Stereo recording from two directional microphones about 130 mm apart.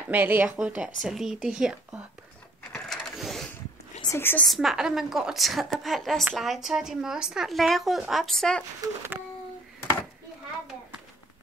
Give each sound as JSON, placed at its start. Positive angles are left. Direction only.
{"t": 0.1, "sound": "a woman's voice", "side_deg": -15}
{"t": 2.7, "sound": "sewing machine", "side_deg": 0}
{"t": 4.1, "sound": "a woman's voice", "side_deg": 15}
{"t": 4.5, "sound": "a woman's voice", "side_deg": -5}
{"t": 8.8, "sound": "a sound", "side_deg": -20}